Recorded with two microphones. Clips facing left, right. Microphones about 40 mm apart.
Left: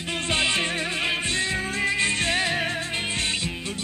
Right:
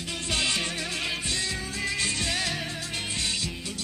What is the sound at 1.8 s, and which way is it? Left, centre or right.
Music, left.